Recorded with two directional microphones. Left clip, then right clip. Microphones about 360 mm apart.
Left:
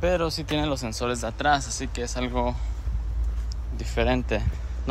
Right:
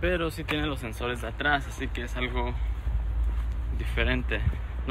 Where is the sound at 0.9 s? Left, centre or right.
Left.